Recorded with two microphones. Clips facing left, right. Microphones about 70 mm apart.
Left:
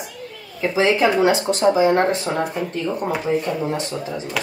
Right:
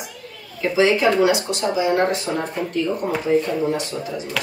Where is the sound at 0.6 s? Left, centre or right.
Left.